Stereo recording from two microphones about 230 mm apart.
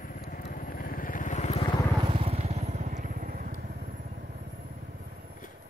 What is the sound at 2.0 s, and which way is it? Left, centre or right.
Vehicle, right.